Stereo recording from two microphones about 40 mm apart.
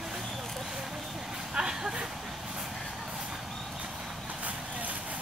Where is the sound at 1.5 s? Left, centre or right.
Centre.